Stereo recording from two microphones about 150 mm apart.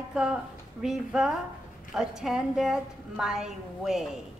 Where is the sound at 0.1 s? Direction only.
5° right (ahead or behind).